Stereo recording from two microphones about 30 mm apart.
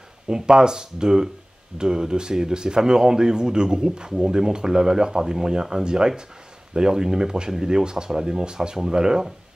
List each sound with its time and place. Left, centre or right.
0.3 s speech: right